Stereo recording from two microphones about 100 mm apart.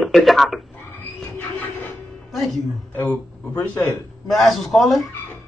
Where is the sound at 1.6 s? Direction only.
15° left (ahead or behind).